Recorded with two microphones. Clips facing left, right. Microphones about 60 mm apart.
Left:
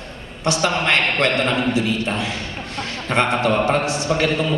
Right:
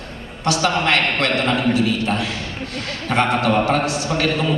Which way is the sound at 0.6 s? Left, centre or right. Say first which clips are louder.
Right 1 dB; centre.